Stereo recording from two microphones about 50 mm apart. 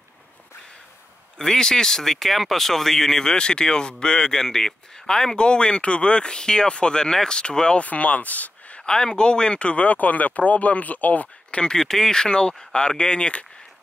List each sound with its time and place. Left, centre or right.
1.4 s speech: centre; by 8.8 s left
8.8 s speech: centre; by 11.6 s left
11.6 s speech: centre